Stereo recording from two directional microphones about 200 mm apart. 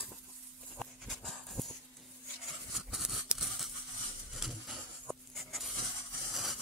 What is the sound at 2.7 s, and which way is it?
Scissors, centre (ahead or behind).